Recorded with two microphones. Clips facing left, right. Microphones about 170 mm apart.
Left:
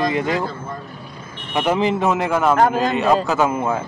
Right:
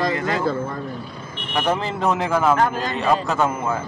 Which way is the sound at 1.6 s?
10° left (ahead or behind).